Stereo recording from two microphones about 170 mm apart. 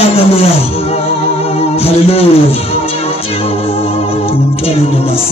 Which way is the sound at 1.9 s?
35° left (ahead or behind).